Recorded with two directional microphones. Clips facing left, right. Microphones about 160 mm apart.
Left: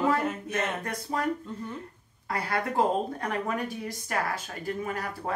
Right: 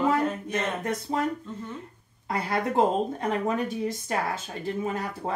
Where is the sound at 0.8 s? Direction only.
20° right (ahead or behind).